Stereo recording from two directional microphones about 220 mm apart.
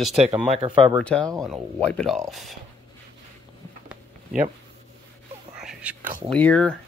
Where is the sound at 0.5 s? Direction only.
20° right (ahead or behind).